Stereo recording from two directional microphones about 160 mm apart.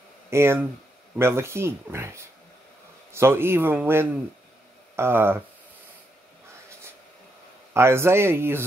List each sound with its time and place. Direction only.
0.3 s a man's voice: 15° right (ahead or behind)
7.7 s a man's voice: 15° right (ahead or behind)